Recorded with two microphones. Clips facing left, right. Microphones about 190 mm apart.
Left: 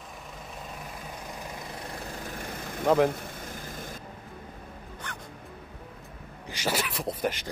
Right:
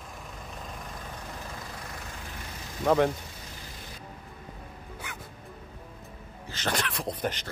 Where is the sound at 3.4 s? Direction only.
50° left (ahead or behind).